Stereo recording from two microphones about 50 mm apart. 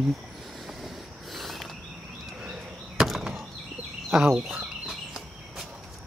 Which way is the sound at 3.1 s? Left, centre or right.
Centre.